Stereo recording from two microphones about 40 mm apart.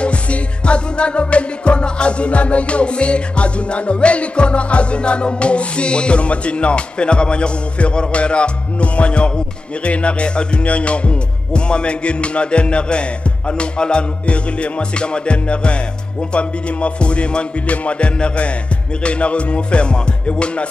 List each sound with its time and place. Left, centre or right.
0.0 s music: left